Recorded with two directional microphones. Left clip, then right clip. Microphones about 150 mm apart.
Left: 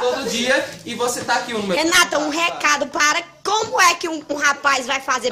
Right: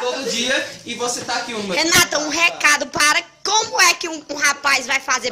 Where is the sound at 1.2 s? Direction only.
10° left (ahead or behind).